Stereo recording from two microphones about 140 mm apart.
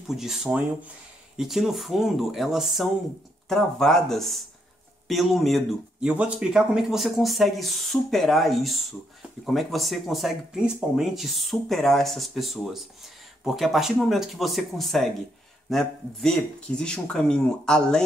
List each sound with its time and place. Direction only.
0.1 s speech: centre (ahead or behind)